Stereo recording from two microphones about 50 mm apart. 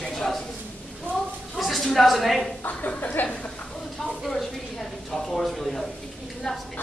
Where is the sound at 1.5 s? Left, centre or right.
Centre.